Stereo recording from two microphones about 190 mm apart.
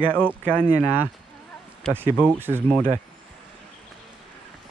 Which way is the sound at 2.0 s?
10° right (ahead or behind).